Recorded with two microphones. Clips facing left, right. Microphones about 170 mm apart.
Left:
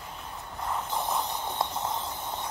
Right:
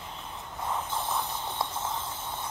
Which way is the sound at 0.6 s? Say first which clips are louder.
Even; centre (ahead or behind).